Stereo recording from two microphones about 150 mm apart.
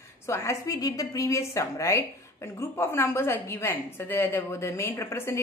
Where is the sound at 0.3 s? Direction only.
20° left (ahead or behind).